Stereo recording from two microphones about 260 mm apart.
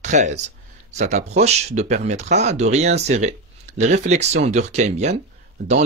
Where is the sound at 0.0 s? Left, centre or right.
Right.